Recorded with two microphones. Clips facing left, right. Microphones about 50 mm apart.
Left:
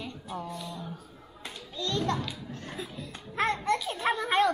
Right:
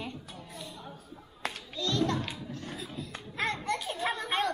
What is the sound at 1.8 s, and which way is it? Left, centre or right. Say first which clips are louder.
Speech: even; left.